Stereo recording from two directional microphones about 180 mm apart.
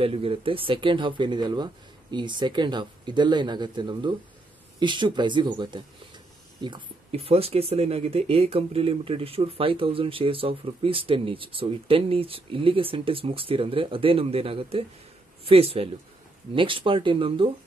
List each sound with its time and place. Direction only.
0.0 s speech: 30° right (ahead or behind)